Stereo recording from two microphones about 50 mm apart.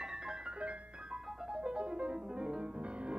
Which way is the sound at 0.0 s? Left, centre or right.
Centre.